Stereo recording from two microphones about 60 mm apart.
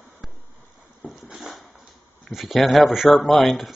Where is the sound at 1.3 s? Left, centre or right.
Centre.